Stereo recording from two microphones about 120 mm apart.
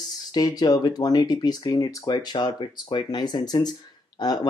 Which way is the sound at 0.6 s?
35° left (ahead or behind).